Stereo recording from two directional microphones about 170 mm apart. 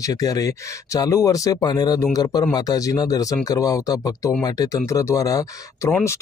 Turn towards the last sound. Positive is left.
turn(degrees=20)  # may be behind; listen again after turning